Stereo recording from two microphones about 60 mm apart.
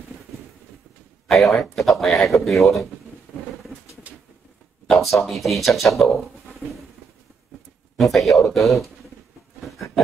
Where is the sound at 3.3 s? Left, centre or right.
Centre.